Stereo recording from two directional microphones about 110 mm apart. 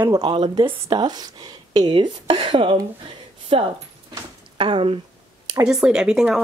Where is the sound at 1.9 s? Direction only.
50° right (ahead or behind).